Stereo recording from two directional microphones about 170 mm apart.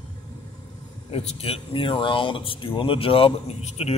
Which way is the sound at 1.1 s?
40° left (ahead or behind).